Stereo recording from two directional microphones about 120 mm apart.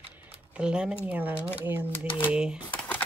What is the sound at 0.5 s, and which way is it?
Speech, 5° right (ahead or behind).